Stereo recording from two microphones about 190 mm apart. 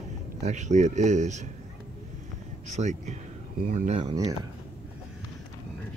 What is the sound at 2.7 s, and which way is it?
Speech, 40° right (ahead or behind).